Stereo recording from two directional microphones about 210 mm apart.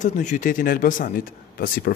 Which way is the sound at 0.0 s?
35° left (ahead or behind).